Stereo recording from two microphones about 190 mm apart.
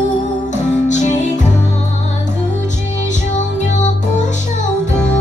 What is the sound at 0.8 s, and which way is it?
Music, 40° left (ahead or behind).